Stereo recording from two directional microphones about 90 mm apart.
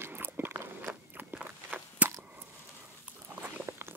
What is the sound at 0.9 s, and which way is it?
Walk, 25° right (ahead or behind).